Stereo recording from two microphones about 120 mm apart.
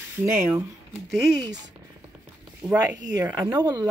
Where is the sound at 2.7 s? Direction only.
30° right (ahead or behind).